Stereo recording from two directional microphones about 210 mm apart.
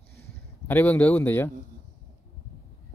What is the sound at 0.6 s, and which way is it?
Speech, 10° left (ahead or behind).